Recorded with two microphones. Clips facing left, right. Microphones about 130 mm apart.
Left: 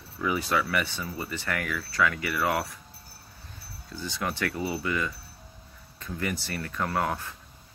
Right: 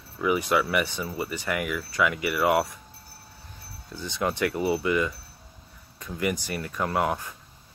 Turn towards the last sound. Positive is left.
turn(degrees=-15)  # may be behind; listen again after turning